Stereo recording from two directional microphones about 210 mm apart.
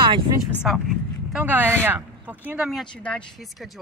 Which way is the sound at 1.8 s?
10° right (ahead or behind).